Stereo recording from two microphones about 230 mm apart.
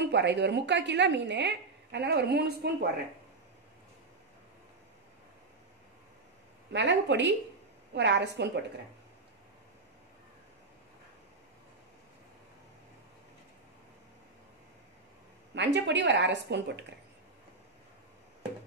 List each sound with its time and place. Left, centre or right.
0.0 s a woman's voice: right
6.7 s a woman's voice: right
15.5 s a woman's voice: right